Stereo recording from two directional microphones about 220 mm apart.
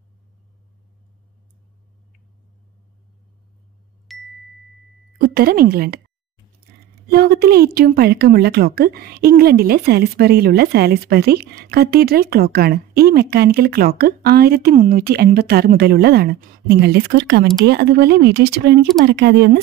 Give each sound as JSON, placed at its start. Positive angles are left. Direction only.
{"t": 4.1, "sound": "ding", "side_deg": 0}
{"t": 5.2, "sound": "a woman's voice", "side_deg": -45}
{"t": 7.1, "sound": "a woman's voice", "side_deg": -45}